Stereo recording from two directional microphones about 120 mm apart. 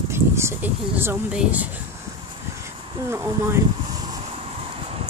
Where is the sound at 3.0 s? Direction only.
25° right (ahead or behind).